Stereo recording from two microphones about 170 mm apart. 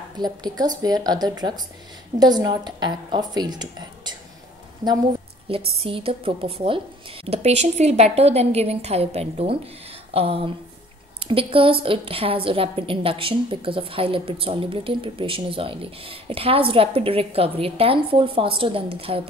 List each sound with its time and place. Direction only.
0.2 s a woman's voice: 25° right (ahead or behind)
5.8 s a woman's voice: 35° right (ahead or behind)